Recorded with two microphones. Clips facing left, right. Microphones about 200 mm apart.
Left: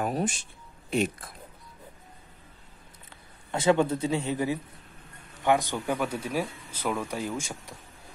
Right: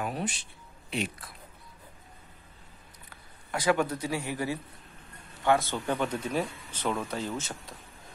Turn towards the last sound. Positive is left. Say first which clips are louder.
# left 2 dB
turn(degrees=10)  # may be behind; listen again after turning